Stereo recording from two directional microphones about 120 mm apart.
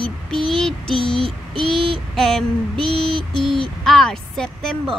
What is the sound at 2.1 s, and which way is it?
Female singing, 5° left (ahead or behind).